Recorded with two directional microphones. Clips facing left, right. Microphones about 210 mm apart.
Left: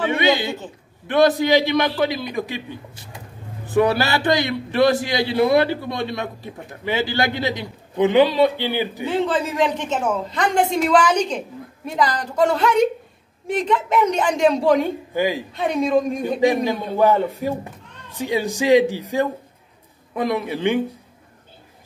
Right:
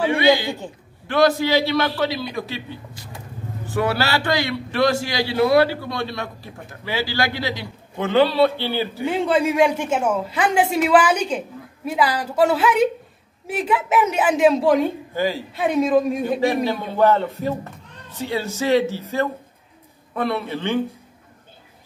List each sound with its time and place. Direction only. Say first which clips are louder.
0.1 s a man's voice: right 2 dB; 20° left (ahead or behind)
9.0 s a woman's voice: right 3 dB; 10° right (ahead or behind)
15.1 s a man's voice: left 2 dB; 15° left (ahead or behind)
15.5 s a woman's voice: right 3 dB; 5° right (ahead or behind)
16.3 s a man's voice: left 2 dB; 15° left (ahead or behind)